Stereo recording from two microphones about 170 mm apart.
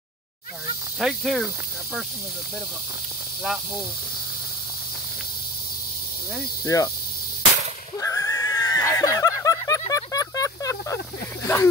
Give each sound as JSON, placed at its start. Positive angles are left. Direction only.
{"t": 0.9, "sound": "speech", "side_deg": 0}
{"t": 6.6, "sound": "cricket", "side_deg": 20}
{"t": 8.0, "sound": "a sound", "side_deg": 20}
{"t": 11.4, "sound": "speech", "side_deg": 15}